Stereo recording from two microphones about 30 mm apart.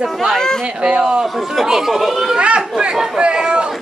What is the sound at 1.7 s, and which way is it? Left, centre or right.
Speech, centre.